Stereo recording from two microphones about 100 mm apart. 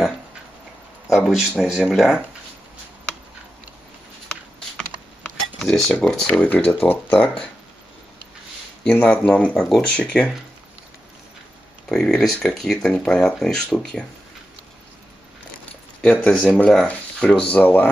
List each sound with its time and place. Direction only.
1.1 s speech: centre (ahead or behind)
4.3 s typing: 10° left (ahead or behind)
6.0 s speech: 5° left (ahead or behind)
8.8 s speech: 15° left (ahead or behind)
9.6 s speech: centre (ahead or behind)
11.9 s speech: 5° left (ahead or behind)
16.0 s speech: 10° left (ahead or behind)